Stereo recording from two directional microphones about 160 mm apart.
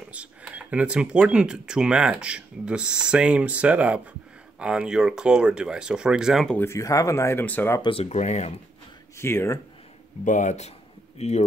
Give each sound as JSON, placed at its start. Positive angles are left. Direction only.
{"t": 0.1, "sound": "speech", "side_deg": -10}
{"t": 6.5, "sound": "speech", "side_deg": 15}
{"t": 7.8, "sound": "speech", "side_deg": 40}
{"t": 9.1, "sound": "speech", "side_deg": 15}
{"t": 10.2, "sound": "speech", "side_deg": 50}